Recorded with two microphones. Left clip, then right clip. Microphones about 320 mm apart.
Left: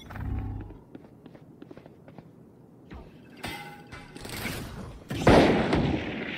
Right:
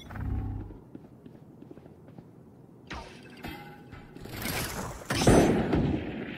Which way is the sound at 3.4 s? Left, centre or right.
Centre.